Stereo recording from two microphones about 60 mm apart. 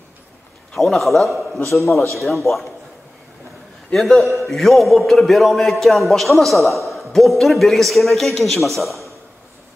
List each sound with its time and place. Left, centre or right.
0.7 s a man's voice: centre
1.6 s a man's voice: left
2.1 s a man's voice: centre
3.9 s a man's voice: centre